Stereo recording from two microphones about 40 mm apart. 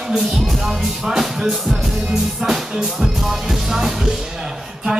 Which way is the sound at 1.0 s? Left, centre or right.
Centre.